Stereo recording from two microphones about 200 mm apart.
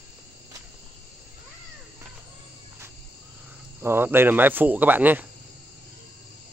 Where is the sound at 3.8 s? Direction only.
10° right (ahead or behind).